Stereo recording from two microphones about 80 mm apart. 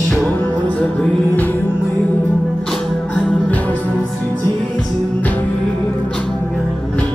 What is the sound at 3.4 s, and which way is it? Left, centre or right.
Music, centre.